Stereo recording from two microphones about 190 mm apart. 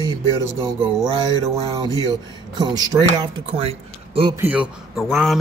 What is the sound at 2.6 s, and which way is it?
Speech, 20° right (ahead or behind).